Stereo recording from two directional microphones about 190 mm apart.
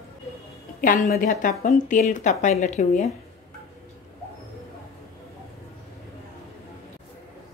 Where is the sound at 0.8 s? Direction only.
45° left (ahead or behind).